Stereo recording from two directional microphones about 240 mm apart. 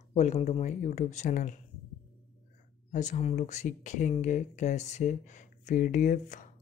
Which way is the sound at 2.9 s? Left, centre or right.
Left.